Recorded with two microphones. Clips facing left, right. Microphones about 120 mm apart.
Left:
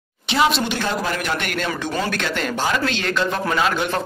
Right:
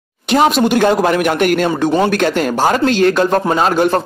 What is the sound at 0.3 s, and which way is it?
Speech, 50° right (ahead or behind).